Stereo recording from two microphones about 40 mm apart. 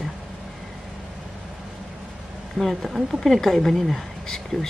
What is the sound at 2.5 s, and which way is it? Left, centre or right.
A woman's voice, centre.